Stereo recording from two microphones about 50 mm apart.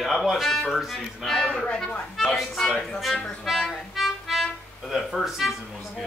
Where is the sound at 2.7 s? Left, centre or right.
Centre.